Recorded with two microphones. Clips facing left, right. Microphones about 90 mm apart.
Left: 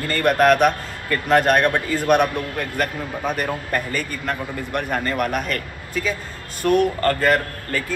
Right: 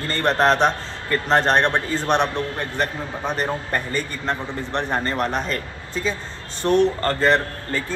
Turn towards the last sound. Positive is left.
turn(degrees=-25)  # may be behind; listen again after turning